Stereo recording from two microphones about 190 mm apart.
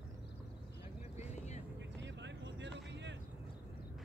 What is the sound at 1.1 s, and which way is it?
Vehicle, 35° left (ahead or behind).